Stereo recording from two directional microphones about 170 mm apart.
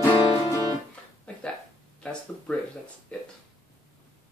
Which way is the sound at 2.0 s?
5° left (ahead or behind).